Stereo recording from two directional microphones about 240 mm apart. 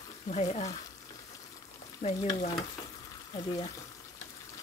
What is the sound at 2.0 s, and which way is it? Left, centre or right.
Speech, left.